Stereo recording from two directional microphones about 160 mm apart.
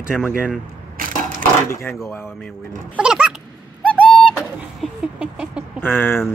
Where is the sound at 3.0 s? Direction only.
5° right (ahead or behind).